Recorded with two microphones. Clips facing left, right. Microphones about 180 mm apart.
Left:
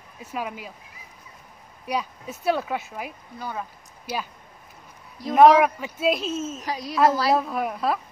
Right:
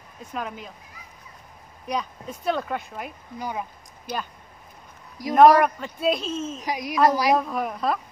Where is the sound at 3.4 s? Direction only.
15° right (ahead or behind).